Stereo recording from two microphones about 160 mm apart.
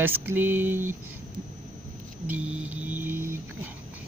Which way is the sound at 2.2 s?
10° right (ahead or behind).